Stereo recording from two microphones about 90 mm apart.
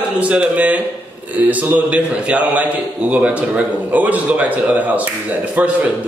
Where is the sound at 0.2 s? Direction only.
15° right (ahead or behind).